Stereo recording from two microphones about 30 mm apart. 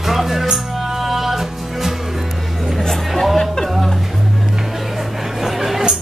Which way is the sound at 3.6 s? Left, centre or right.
Centre.